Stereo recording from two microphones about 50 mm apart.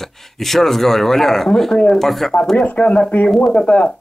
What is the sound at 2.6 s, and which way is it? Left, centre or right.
Speech, left.